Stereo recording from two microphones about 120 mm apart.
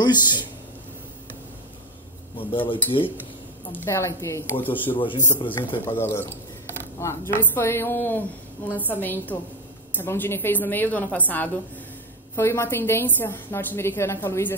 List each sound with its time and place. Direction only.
0.0 s speech: 35° left (ahead or behind)
2.3 s speech: 45° left (ahead or behind)
3.7 s a woman's voice: 20° left (ahead or behind)
4.8 s speech: 45° left (ahead or behind)
5.9 s a woman's voice: 20° left (ahead or behind)